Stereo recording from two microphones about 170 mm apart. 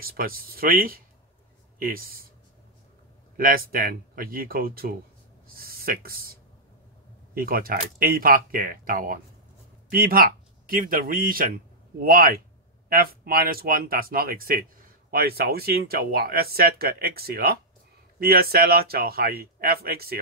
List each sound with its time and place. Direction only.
0.0 s speech: 60° right (ahead or behind)
3.3 s speech: 60° right (ahead or behind)
7.3 s speech: 60° right (ahead or behind)